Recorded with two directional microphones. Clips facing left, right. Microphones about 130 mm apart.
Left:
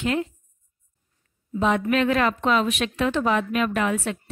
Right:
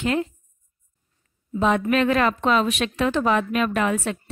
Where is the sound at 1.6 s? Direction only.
45° right (ahead or behind).